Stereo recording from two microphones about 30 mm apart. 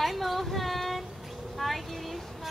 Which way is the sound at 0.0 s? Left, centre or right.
Centre.